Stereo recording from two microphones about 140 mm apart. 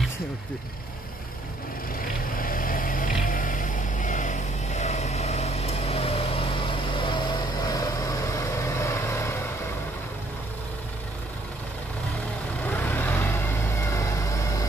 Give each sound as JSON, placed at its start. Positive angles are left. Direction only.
{"t": 2.3, "sound": "vehicle", "side_deg": 85}
{"t": 12.6, "sound": "vehicle", "side_deg": 15}